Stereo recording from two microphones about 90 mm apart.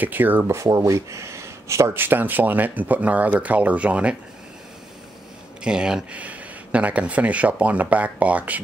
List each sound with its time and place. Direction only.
0.0 s speech: 20° right (ahead or behind)
0.6 s speech: 35° right (ahead or behind); by 4.2 s 15° right (ahead or behind)
5.6 s speech: 10° right (ahead or behind)